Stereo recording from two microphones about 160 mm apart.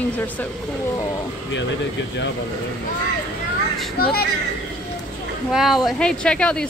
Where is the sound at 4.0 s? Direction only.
75° left (ahead or behind).